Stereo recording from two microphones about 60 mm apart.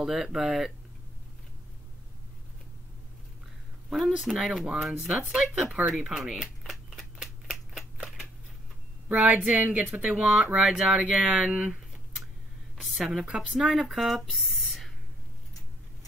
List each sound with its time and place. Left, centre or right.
0.0 s speech: centre
4.1 s speech: centre
6.0 s speech: centre
7.4 s a sound: centre
9.1 s speech: right
12.8 s speech: centre